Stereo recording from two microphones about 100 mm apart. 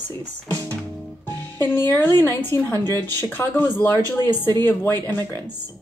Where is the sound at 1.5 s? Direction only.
20° left (ahead or behind).